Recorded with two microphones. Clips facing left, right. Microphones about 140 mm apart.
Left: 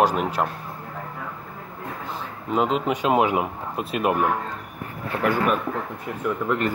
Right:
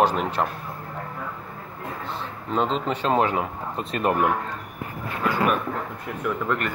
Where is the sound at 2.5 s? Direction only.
10° left (ahead or behind).